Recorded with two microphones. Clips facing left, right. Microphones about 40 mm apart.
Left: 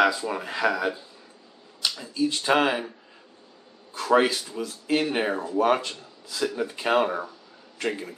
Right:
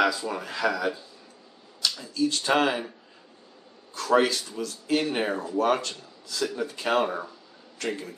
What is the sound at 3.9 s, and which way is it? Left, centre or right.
Speech, centre.